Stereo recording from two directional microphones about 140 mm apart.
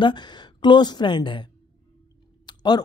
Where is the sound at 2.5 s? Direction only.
30° left (ahead or behind).